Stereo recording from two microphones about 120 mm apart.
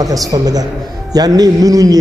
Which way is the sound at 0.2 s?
30° right (ahead or behind).